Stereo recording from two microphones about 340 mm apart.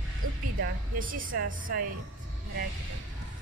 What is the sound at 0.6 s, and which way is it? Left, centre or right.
A woman's voice, right.